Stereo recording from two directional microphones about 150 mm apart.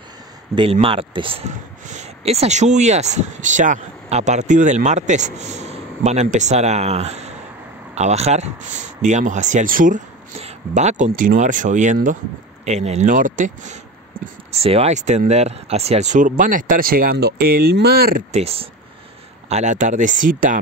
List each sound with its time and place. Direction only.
0.6 s speech: 40° right (ahead or behind)
1.5 s speech: 55° right (ahead or behind)
10.4 s speech: 50° right (ahead or behind)
14.5 s speech: 45° right (ahead or behind); by 18.2 s 85° right
18.3 s speech: 40° right (ahead or behind)
19.5 s speech: 55° right (ahead or behind)